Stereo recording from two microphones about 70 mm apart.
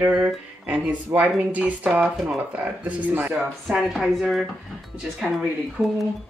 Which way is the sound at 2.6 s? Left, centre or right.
Centre.